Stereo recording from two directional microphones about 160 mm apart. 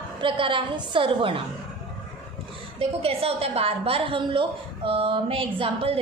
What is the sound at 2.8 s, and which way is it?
A woman's voice, 35° right (ahead or behind).